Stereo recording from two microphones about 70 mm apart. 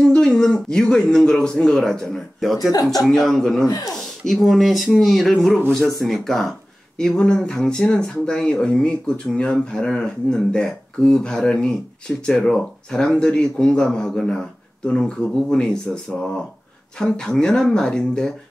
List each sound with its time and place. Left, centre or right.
0.0 s speech: centre
2.7 s speech: left
3.1 s speech: centre
3.6 s speech: left
4.3 s speech: centre
7.0 s speech: centre